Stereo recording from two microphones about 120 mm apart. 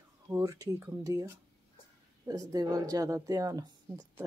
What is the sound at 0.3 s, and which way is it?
Speech, 30° right (ahead or behind).